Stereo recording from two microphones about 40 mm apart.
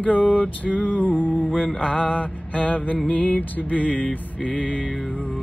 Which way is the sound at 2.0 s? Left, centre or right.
Left.